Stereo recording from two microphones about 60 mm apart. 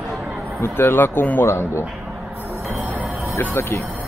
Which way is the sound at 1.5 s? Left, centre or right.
Left.